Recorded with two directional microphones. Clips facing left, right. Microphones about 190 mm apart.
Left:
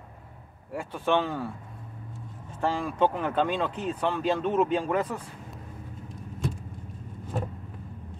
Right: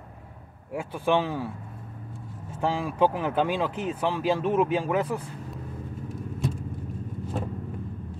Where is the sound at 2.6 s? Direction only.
5° right (ahead or behind).